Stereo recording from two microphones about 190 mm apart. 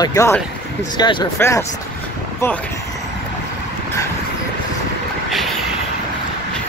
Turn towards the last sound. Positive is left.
turn(degrees=0)  # may be behind; listen again after turning